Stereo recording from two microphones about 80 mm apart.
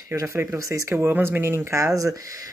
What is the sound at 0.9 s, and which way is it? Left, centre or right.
Speech, right.